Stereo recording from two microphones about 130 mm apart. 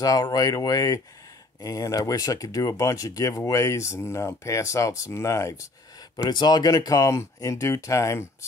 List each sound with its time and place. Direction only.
0.0 s speech: 30° left (ahead or behind)